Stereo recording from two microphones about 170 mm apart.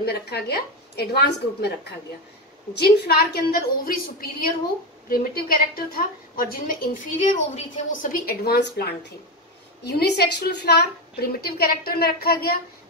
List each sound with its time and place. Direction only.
0.0 s a woman's voice: 70° left (ahead or behind)